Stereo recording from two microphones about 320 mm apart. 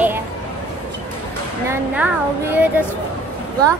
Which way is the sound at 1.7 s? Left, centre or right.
Centre.